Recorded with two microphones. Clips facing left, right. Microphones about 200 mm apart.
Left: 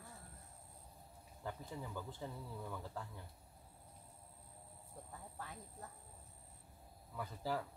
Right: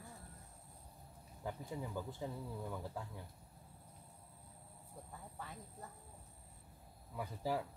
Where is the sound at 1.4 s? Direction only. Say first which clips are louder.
Right 3 dB; 15° right (ahead or behind).